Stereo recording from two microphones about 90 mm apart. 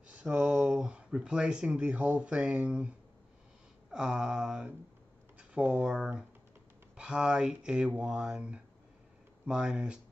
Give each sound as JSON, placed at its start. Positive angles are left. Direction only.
{"t": 0.1, "sound": "speech", "side_deg": -10}
{"t": 3.9, "sound": "speech", "side_deg": -10}